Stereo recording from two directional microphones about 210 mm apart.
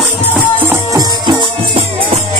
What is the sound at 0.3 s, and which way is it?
Music, 10° right (ahead or behind).